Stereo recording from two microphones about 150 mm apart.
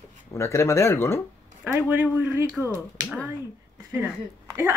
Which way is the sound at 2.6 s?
Centre (ahead or behind).